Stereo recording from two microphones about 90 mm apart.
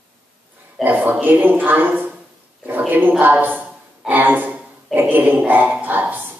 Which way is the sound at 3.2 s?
20° right (ahead or behind).